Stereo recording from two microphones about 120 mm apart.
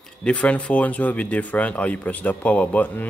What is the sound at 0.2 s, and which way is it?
Speech, 10° left (ahead or behind).